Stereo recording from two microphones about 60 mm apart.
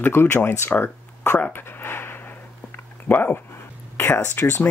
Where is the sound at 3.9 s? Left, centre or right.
Left.